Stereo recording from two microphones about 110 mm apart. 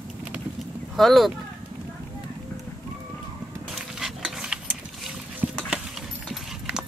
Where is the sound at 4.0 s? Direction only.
5° right (ahead or behind).